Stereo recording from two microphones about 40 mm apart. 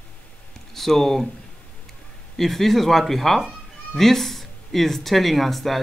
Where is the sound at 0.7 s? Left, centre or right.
Centre.